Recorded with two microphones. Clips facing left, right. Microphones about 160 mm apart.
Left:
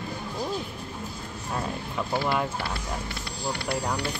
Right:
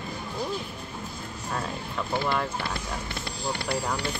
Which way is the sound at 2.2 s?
5° left (ahead or behind).